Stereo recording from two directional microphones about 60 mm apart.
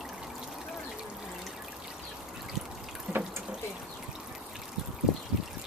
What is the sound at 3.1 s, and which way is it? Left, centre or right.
Water tap, centre.